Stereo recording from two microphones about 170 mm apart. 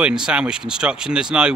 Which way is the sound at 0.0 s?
5° right (ahead or behind).